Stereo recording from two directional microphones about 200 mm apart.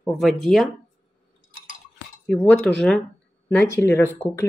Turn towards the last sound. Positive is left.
turn(degrees=15)  # may be behind; listen again after turning